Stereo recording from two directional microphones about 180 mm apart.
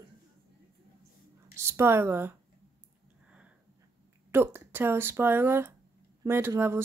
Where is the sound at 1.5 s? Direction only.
15° right (ahead or behind).